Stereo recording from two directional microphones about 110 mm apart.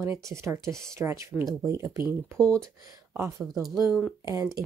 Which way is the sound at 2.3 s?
10° left (ahead or behind).